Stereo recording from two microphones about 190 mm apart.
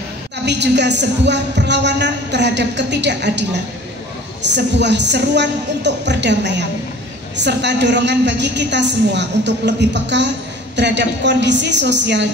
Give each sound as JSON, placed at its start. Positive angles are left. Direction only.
{"t": 0.5, "sound": "a woman's voice", "side_deg": -65}